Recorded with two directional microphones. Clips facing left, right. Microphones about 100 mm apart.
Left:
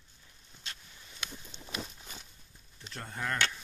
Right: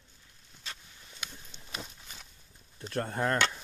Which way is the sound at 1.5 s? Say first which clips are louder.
Left 4 dB; 10° right (ahead or behind).